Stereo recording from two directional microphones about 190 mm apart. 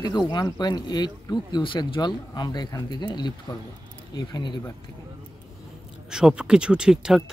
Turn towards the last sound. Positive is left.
turn(degrees=-5)  # may be behind; listen again after turning